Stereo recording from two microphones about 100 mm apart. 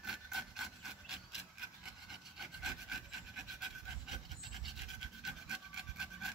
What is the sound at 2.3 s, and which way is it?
Wood, 5° right (ahead or behind).